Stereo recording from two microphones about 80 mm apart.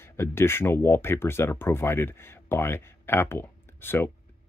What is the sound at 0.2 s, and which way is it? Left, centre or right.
Speech, left.